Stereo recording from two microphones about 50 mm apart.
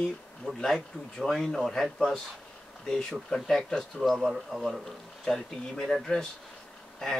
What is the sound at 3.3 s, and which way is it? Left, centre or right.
Speech, centre.